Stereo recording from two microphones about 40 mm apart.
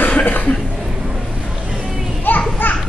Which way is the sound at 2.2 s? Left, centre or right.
Left.